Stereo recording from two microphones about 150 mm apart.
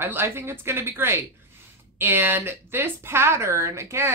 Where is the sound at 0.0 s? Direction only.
15° right (ahead or behind).